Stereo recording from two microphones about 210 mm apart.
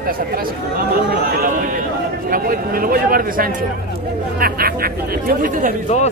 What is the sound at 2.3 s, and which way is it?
Speech, 40° right (ahead or behind).